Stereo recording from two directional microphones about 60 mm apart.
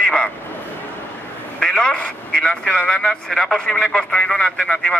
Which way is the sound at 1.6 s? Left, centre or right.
Centre.